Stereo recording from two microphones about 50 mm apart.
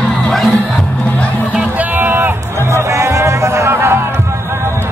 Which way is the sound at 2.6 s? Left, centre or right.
Right.